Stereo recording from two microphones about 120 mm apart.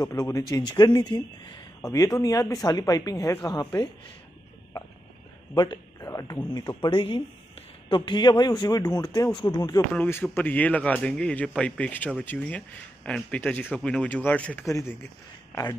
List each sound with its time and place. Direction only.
0.0 s speech: 30° left (ahead or behind)
5.5 s speech: 30° left (ahead or behind)
6.8 s speech: 45° left (ahead or behind)
9.9 s speech: 15° left (ahead or behind)
14.7 s speech: 25° left (ahead or behind)